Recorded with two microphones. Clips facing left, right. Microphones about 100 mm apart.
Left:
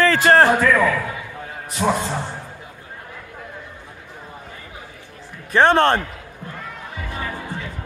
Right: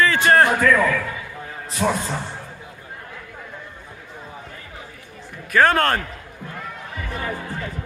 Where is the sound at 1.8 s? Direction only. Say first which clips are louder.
Left 1 dB; 5° left (ahead or behind).